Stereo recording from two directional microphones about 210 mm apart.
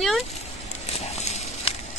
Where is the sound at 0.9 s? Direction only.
30° left (ahead or behind).